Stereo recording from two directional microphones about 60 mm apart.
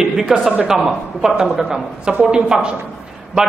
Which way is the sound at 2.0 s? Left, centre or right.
Centre.